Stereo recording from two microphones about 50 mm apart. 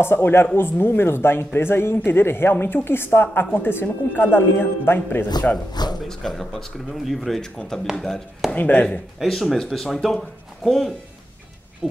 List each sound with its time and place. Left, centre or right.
0.0 s speech: left
5.5 s speech: left
6.0 s speech: centre
8.5 s speech: left
9.3 s speech: centre
11.8 s owl: centre